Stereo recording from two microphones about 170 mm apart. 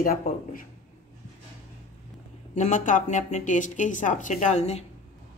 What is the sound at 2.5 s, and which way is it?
A woman's voice, 45° left (ahead or behind).